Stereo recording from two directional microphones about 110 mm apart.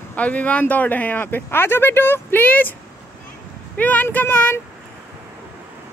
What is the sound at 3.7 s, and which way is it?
Speech, 15° left (ahead or behind).